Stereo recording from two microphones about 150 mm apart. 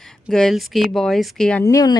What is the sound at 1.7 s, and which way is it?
Speech, 25° left (ahead or behind).